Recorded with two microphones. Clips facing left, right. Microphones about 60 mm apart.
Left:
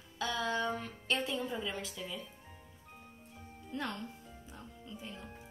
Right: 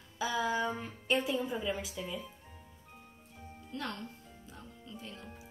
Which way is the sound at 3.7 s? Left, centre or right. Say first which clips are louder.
Left 1 dB; centre.